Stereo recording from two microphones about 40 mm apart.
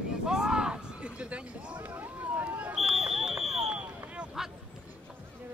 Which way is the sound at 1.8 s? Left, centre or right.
Right.